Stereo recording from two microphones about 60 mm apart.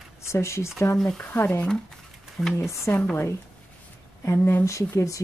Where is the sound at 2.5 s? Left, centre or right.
Left.